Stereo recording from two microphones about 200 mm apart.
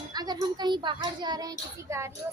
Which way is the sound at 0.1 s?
20° right (ahead or behind).